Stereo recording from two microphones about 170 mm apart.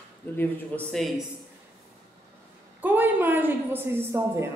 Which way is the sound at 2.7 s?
10° right (ahead or behind).